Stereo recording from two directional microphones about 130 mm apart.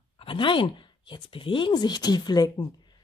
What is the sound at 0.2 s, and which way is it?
Speech, 40° left (ahead or behind).